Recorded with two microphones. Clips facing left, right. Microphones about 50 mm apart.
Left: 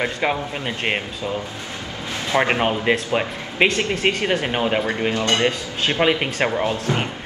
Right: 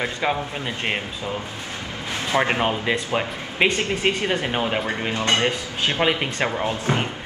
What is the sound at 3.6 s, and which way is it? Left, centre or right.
Speech, centre.